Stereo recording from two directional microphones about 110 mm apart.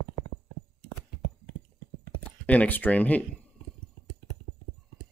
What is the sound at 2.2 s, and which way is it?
Speech, 15° left (ahead or behind).